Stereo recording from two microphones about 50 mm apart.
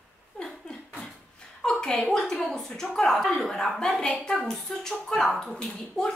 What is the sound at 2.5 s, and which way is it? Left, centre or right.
Speech, centre.